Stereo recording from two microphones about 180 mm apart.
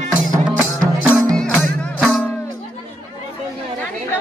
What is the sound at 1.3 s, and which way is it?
Music, 5° left (ahead or behind).